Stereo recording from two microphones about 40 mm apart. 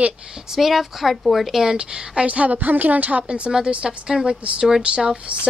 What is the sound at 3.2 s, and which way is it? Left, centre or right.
Speech, right.